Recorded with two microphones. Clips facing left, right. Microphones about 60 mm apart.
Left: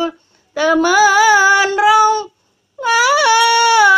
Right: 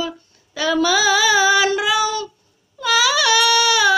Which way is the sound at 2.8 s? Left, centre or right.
Left.